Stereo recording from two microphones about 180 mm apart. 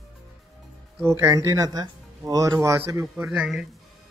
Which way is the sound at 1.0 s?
15° right (ahead or behind).